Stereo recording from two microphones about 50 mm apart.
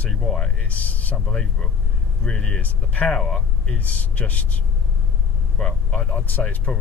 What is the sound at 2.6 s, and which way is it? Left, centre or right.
Speech, left.